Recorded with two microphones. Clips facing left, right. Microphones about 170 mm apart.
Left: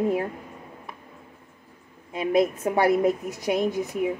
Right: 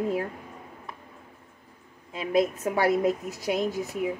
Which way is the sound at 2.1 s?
20° left (ahead or behind).